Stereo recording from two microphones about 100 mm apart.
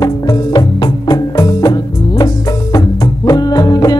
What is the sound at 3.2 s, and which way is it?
Music, 40° left (ahead or behind).